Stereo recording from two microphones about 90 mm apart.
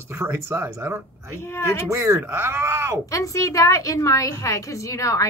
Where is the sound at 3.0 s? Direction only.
40° left (ahead or behind).